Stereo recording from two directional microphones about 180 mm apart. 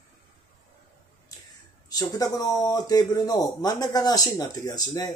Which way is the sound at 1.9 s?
20° left (ahead or behind).